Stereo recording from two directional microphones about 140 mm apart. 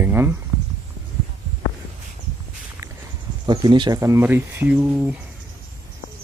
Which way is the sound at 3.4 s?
30° right (ahead or behind).